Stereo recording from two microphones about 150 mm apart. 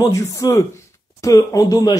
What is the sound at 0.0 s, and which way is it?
Speech, 20° left (ahead or behind).